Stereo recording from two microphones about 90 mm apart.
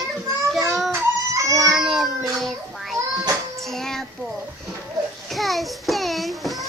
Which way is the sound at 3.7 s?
5° left (ahead or behind).